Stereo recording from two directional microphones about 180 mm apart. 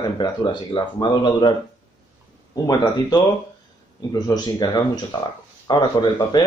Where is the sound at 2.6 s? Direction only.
20° left (ahead or behind).